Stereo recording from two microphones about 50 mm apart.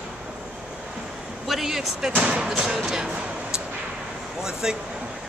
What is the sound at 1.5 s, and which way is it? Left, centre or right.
Speech, centre.